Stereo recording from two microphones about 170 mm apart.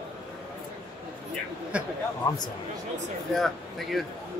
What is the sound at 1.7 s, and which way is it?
Speech, 10° right (ahead or behind).